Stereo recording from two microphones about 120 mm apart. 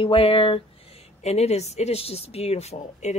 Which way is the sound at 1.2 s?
65° left (ahead or behind).